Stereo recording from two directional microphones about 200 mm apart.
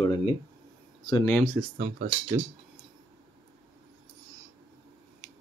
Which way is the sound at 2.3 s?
15° right (ahead or behind).